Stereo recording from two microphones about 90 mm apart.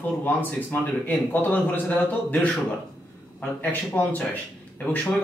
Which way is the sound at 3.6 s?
20° left (ahead or behind).